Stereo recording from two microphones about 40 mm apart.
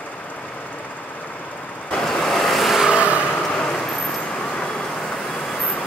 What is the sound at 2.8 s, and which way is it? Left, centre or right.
Vehicle, right.